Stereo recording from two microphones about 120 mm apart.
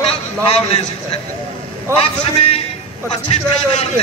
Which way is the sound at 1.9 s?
55° left (ahead or behind).